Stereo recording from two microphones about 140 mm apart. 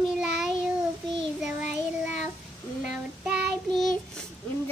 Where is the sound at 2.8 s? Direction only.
5° right (ahead or behind).